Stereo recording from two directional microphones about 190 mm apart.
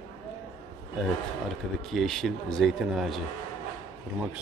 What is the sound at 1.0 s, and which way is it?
Speech, centre (ahead or behind).